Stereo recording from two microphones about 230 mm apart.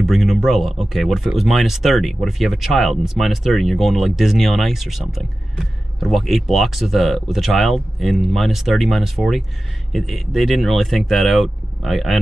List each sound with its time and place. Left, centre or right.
0.0 s speech: centre